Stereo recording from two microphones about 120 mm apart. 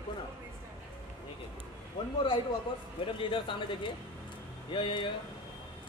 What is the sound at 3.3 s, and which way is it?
A man's voice, 45° left (ahead or behind).